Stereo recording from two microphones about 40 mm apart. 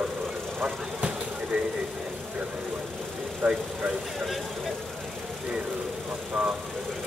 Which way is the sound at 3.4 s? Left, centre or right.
Right.